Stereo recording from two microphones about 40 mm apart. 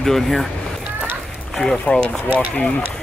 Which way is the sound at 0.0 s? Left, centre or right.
Centre.